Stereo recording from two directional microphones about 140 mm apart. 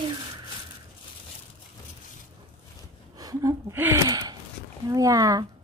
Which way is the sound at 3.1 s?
25° right (ahead or behind).